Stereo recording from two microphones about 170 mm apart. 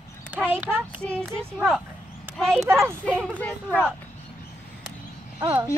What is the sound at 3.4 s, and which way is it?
Speech, 10° left (ahead or behind).